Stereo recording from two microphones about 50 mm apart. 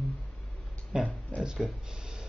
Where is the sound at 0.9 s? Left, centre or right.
Centre.